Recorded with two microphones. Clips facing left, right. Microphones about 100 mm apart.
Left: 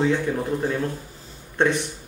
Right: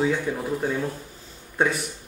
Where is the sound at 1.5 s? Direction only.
5° right (ahead or behind).